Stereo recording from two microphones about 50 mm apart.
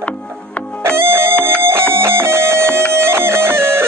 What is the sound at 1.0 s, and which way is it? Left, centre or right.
Music, right.